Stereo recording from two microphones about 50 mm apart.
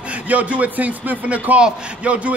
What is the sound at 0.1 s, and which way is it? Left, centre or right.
A man's voice, right.